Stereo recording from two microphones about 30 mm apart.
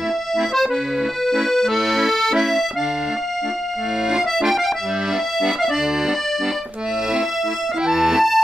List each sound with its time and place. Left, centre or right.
1.7 s accordion: centre
4.1 s accordion: right
7.8 s accordion: right